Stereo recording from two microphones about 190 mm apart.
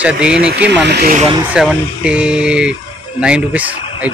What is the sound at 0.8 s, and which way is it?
Speech, 60° right (ahead or behind).